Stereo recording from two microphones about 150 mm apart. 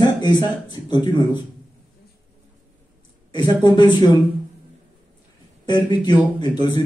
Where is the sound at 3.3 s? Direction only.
30° left (ahead or behind).